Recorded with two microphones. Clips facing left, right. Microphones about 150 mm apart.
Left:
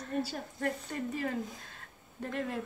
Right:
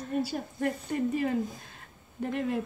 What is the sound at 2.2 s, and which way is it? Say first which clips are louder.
Speech: right 5 dB; 15° right (ahead or behind).